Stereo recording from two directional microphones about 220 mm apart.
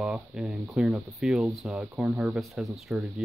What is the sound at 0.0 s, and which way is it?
Speech, 5° right (ahead or behind).